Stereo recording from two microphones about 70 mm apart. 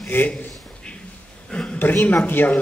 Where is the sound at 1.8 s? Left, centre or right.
Left.